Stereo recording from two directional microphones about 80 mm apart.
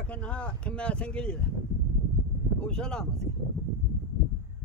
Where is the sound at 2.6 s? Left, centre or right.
Centre.